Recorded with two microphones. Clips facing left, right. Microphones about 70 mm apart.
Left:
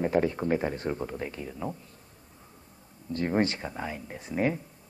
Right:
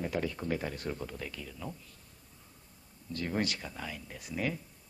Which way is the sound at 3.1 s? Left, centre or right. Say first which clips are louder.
Left 7 dB; left.